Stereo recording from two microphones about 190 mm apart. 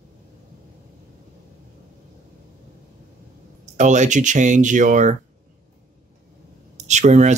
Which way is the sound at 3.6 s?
40° right (ahead or behind).